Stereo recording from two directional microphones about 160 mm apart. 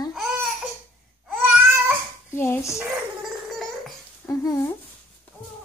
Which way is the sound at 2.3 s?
15° left (ahead or behind).